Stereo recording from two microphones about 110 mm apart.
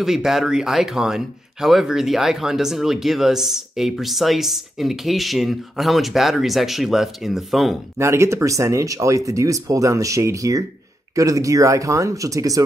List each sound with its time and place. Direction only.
0.0 s speech: 5° right (ahead or behind)
8.0 s speech: 25° right (ahead or behind)